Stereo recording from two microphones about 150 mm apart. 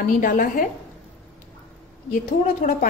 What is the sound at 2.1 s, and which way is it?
Speech, 60° left (ahead or behind).